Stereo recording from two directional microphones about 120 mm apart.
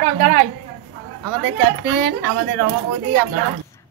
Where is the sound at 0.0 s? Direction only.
90° right.